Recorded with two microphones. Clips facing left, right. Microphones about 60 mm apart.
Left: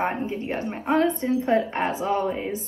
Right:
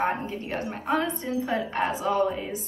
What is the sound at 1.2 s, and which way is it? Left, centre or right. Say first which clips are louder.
Speech: left 6 dB; left.